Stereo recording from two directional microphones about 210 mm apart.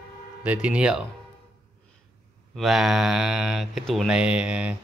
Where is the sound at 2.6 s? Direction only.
Centre (ahead or behind).